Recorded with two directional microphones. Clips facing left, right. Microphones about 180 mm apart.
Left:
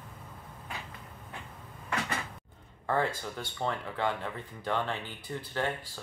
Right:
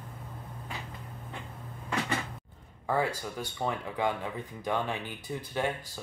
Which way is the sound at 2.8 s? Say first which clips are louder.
Right 1 dB; 10° right (ahead or behind).